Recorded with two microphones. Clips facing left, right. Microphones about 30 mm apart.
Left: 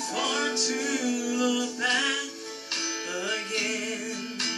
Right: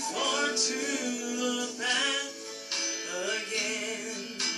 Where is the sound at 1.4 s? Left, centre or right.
Left.